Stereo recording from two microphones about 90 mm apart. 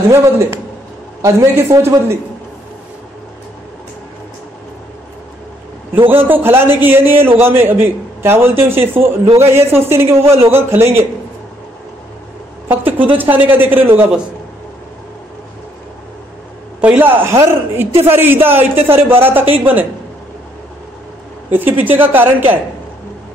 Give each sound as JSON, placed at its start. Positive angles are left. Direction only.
{"t": 1.2, "sound": "a man's voice", "side_deg": -30}
{"t": 6.1, "sound": "a man's voice", "side_deg": -20}
{"t": 12.6, "sound": "a sound", "side_deg": -20}
{"t": 13.2, "sound": "a man's voice", "side_deg": -20}
{"t": 16.8, "sound": "a man's voice", "side_deg": -20}
{"t": 21.5, "sound": "a man's voice", "side_deg": -20}